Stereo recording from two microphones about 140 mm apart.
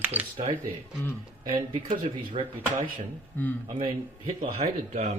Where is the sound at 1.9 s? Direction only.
35° right (ahead or behind).